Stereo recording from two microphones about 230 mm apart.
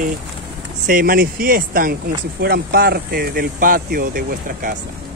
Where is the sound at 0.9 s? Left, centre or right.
Right.